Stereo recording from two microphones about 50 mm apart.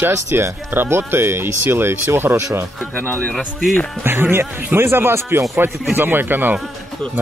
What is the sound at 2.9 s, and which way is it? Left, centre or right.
Speech, left.